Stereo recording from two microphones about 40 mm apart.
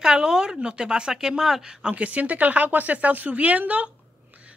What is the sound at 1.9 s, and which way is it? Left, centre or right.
A woman's voice, right.